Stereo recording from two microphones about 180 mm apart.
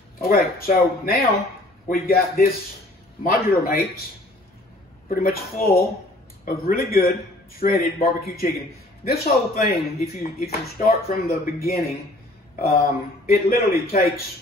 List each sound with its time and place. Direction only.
0.2 s speech: 55° left (ahead or behind)
5.1 s speech: 55° left (ahead or behind)